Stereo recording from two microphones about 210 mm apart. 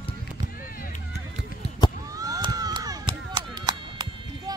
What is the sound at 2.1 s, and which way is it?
Chop, 15° right (ahead or behind).